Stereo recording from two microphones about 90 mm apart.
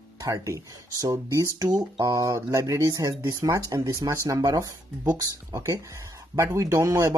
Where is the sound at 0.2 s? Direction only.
40° right (ahead or behind).